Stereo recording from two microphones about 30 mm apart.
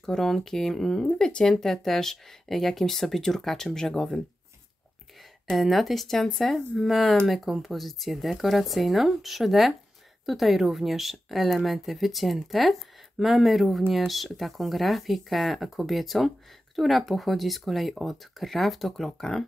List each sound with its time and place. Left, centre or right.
0.0 s speech: centre
1.1 s speech: left
1.5 s speech: centre
5.6 s speech: centre
19.1 s speech: centre